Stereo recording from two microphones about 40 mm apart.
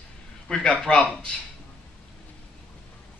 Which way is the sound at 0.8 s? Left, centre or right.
Left.